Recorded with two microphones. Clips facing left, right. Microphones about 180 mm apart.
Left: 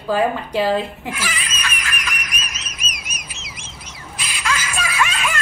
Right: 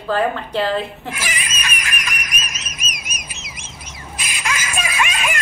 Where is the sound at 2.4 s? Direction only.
45° right (ahead or behind).